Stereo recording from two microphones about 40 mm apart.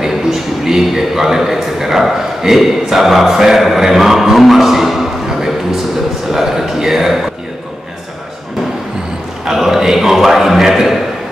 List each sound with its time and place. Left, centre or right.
0.0 s a man's voice: centre
9.4 s a man's voice: centre